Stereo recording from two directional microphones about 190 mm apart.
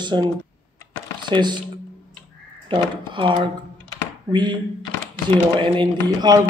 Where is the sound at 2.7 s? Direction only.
25° right (ahead or behind).